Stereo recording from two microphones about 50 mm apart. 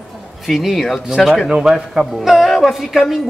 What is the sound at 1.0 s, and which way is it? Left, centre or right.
A man's voice, centre.